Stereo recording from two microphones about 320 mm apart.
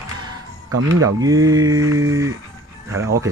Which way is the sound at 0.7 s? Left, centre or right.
Right.